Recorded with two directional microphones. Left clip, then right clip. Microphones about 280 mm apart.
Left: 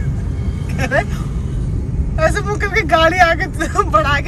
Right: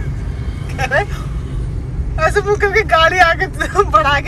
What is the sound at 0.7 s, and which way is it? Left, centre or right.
Speech, centre.